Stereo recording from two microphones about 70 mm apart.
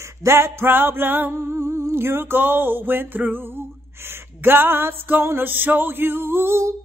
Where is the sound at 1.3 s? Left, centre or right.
Right.